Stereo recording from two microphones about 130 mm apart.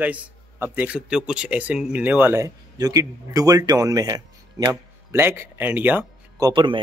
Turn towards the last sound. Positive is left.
turn(degrees=-35)  # may be behind; listen again after turning